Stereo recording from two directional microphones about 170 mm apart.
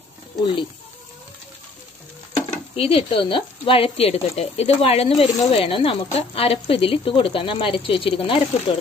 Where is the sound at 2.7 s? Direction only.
30° left (ahead or behind).